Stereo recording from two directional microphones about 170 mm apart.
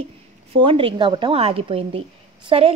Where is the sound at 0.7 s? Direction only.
30° right (ahead or behind).